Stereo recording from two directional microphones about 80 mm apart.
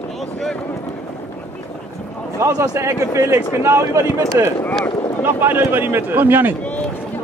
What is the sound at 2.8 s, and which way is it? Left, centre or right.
Speech, right.